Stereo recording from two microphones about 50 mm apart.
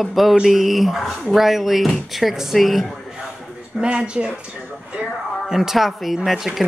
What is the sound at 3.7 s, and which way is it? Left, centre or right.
Speech, right.